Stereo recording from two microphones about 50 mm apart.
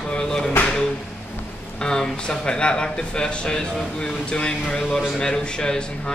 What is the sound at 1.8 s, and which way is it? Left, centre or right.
Speech, centre.